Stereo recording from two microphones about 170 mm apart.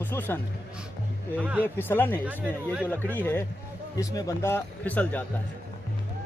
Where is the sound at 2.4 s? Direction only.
10° right (ahead or behind).